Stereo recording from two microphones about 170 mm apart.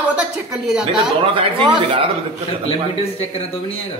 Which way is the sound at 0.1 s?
5° right (ahead or behind).